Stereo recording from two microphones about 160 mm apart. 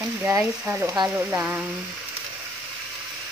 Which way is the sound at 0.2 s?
10° right (ahead or behind).